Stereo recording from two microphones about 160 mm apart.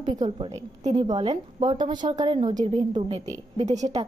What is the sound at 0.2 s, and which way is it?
Speech, 35° right (ahead or behind).